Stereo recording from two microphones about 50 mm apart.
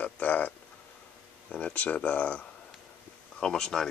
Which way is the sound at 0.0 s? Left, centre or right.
Left.